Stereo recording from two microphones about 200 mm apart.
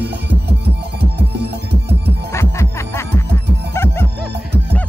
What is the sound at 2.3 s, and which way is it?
Music, 15° left (ahead or behind).